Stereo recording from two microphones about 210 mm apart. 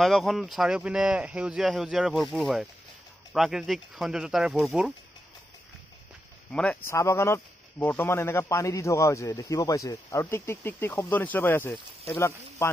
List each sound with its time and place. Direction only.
0.0 s speech: centre (ahead or behind)
6.5 s speech: 5° left (ahead or behind)